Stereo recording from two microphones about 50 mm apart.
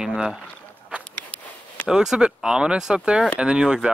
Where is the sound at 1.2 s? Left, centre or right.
Left.